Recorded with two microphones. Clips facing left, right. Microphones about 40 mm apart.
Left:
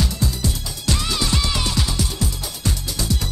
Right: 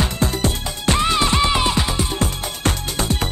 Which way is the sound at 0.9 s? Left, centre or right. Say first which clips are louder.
Right 7 dB; right.